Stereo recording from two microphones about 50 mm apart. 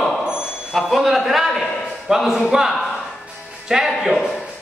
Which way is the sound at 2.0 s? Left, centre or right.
Centre.